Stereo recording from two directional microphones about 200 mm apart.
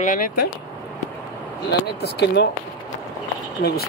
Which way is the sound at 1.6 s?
55° left (ahead or behind).